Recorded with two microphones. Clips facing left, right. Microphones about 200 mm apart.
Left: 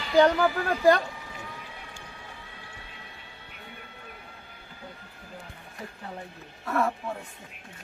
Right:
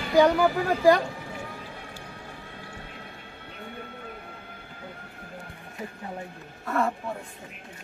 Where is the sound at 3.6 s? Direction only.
55° right (ahead or behind).